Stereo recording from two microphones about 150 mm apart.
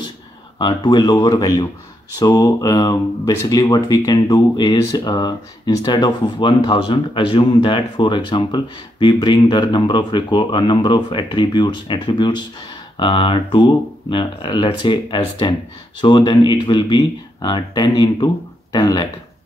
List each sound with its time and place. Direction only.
0.6 s speech: 30° left (ahead or behind)